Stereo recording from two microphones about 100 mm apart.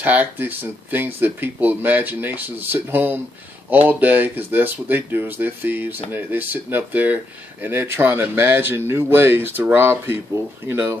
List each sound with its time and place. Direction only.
0.0 s speech: 15° right (ahead or behind)